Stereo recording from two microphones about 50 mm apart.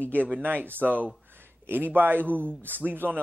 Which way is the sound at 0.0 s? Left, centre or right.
Right.